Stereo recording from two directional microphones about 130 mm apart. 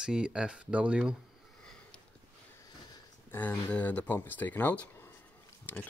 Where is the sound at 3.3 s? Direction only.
15° left (ahead or behind).